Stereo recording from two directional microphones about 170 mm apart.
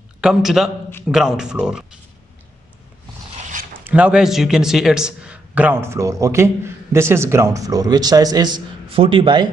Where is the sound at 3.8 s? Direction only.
10° right (ahead or behind).